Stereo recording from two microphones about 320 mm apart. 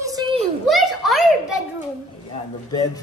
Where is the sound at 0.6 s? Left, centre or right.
Centre.